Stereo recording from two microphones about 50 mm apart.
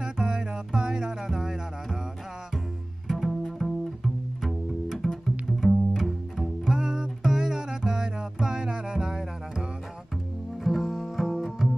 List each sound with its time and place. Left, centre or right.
0.0 s music: centre
3.1 s bowed string instrument: centre
5.7 s cello: centre
6.6 s music: centre
10.6 s double bass: centre
11.6 s music: centre